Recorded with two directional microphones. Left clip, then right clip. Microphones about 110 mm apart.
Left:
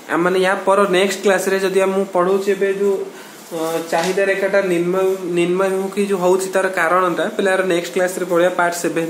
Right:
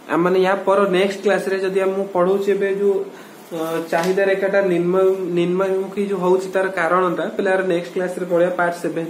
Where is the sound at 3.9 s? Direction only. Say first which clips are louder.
Even; centre (ahead or behind).